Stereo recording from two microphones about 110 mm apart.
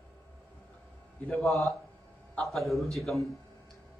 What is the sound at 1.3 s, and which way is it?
Speech, centre (ahead or behind).